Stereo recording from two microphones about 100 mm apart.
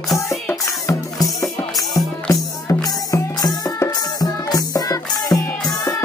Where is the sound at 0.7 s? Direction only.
35° left (ahead or behind).